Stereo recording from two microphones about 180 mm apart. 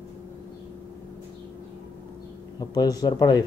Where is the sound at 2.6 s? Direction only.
20° left (ahead or behind).